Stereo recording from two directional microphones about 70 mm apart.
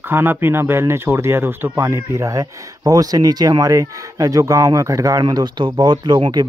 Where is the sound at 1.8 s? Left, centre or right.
Right.